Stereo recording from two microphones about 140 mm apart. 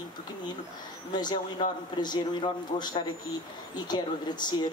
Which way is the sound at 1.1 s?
30° left (ahead or behind).